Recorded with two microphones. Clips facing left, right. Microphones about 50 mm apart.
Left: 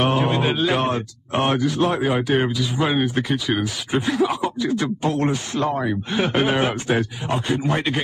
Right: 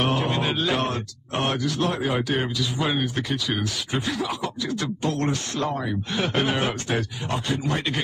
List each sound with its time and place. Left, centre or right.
0.0 s speech: centre